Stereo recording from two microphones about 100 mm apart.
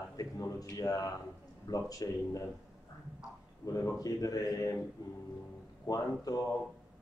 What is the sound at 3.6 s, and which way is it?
Speech, 35° left (ahead or behind).